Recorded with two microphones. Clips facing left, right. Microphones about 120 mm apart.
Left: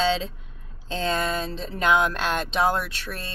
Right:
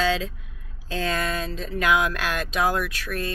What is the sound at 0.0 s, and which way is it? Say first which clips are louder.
Speech: even; 25° left (ahead or behind).